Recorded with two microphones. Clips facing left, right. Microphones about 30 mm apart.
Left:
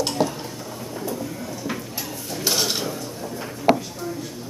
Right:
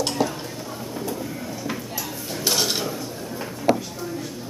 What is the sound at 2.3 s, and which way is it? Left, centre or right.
Dishes, centre.